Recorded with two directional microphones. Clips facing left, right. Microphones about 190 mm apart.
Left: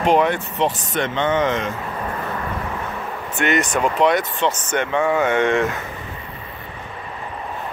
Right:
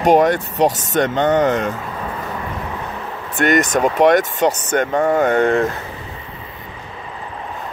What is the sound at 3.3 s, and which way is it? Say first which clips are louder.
Speech: right 4 dB; 40° right (ahead or behind).